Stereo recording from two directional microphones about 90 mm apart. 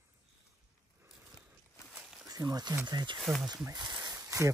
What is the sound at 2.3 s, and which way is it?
Speech, 50° right (ahead or behind).